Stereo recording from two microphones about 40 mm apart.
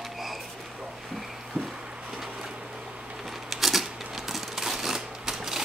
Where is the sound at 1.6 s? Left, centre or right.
Right.